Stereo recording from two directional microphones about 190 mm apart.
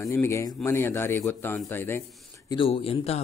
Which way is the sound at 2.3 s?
20° left (ahead or behind).